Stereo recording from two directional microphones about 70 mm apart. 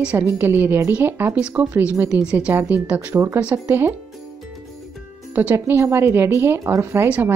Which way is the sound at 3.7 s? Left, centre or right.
Right.